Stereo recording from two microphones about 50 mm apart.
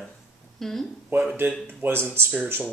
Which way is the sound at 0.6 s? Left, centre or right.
Centre.